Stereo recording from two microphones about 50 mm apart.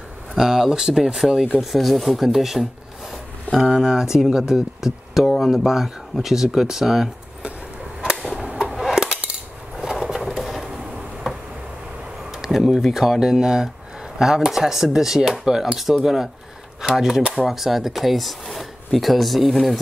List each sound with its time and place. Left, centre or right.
0.3 s speech: centre
5.2 s speech: centre
8.0 s a sound: centre
8.7 s dishes: centre
10.3 s a sound: centre
12.3 s speech: centre